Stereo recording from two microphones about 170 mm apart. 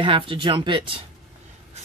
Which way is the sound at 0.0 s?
30° right (ahead or behind).